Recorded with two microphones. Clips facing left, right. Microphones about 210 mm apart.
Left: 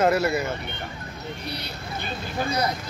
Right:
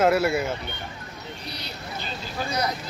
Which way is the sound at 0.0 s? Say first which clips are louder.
Right 1 dB; 5° right (ahead or behind).